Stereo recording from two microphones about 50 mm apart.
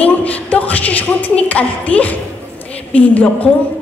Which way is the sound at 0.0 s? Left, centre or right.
Left.